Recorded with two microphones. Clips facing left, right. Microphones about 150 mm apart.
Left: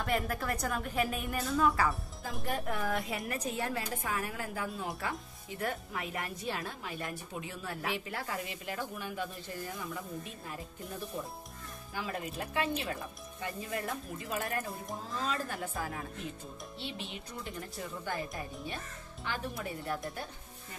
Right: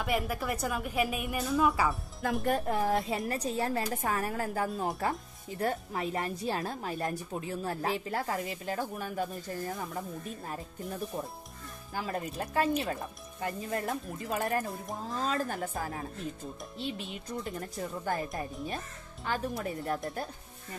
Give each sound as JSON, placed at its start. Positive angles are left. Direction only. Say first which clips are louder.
{"t": 0.0, "sound": "a woman's voice", "louder": "right 2 dB", "side_deg": -5}
{"t": 2.2, "sound": "speech", "louder": "right 10 dB", "side_deg": -65}
{"t": 2.6, "sound": "speech", "louder": "right 5 dB", "side_deg": -30}
{"t": 11.9, "sound": "speech", "louder": "right 3 dB", "side_deg": -40}
{"t": 19.2, "sound": "speech", "louder": "right 5 dB", "side_deg": -40}